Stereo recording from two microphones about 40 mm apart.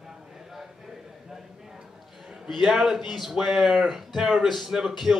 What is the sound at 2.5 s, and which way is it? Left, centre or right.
A man's voice, centre.